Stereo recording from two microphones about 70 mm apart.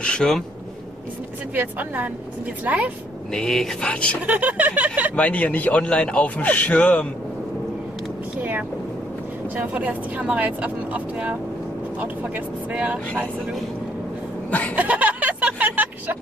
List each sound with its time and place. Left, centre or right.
0.0 s speech: centre
1.5 s speech: right
3.3 s speech: centre
4.3 s speech: right
5.1 s speech: centre
8.4 s vehicle: right
9.6 s speech: right
14.5 s chuckle: left
14.8 s a sound: right